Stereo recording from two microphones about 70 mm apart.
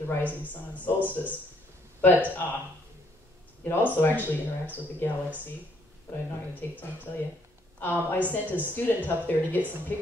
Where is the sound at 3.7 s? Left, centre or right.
Left.